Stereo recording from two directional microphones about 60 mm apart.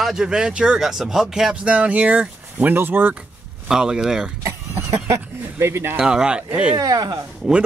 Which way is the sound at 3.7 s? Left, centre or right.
Centre.